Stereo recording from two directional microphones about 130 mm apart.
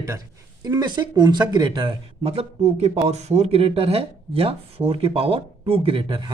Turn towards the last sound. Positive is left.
turn(degrees=-35)  # may be behind; listen again after turning